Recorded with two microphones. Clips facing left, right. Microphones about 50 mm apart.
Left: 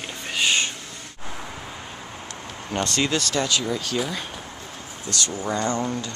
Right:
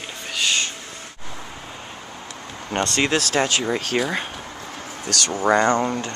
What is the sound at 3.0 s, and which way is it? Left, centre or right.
Speech, right.